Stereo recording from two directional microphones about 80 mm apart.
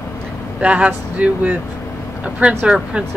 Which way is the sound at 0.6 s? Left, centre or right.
Centre.